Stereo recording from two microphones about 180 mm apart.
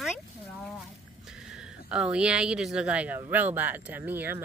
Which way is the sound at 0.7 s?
Centre (ahead or behind).